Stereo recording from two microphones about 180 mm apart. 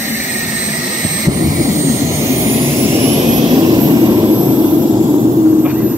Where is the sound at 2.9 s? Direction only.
30° right (ahead or behind).